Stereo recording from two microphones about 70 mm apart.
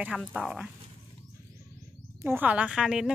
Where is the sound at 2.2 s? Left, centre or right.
Right.